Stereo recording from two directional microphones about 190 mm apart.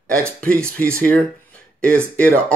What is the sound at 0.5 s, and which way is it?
Speech, 15° right (ahead or behind).